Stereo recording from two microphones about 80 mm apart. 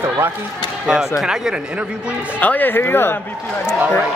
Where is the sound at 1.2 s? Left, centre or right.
Centre.